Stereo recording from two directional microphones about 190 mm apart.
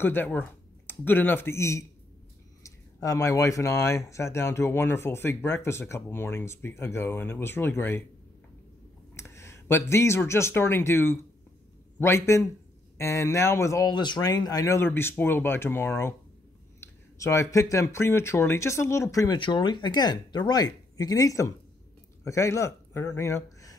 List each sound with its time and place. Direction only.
0.0 s speech: 10° left (ahead or behind)
9.1 s speech: 15° left (ahead or behind)